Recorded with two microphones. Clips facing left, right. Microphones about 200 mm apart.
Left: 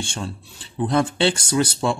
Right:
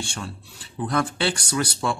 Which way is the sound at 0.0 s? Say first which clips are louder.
Left 3 dB; 25° left (ahead or behind).